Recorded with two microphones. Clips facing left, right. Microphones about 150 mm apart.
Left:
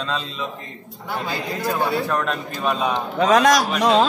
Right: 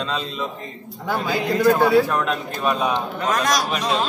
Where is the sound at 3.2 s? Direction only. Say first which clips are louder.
Left 8 dB; 75° left (ahead or behind).